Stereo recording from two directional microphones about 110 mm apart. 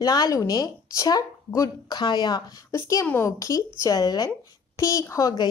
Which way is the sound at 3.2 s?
30° left (ahead or behind).